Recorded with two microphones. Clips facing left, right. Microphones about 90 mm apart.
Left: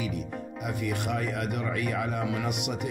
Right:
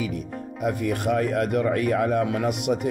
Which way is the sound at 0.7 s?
45° right (ahead or behind).